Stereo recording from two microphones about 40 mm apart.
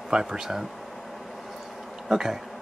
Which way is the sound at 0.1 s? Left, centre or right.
Centre.